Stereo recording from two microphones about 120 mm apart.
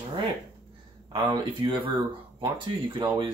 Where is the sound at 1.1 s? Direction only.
40° right (ahead or behind).